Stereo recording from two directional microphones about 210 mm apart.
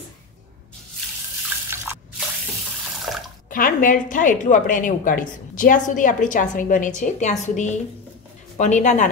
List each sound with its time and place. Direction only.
1.7 s drip: 10° right (ahead or behind)
3.4 s a woman's voice: 40° left (ahead or behind)